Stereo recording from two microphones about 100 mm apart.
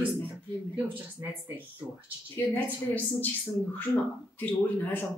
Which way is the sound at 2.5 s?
20° left (ahead or behind).